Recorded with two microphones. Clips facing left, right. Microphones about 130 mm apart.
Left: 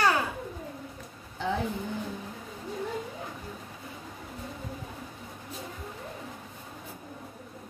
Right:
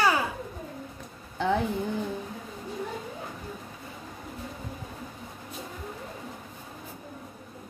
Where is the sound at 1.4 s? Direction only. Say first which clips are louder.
Right 5 dB; 65° right (ahead or behind).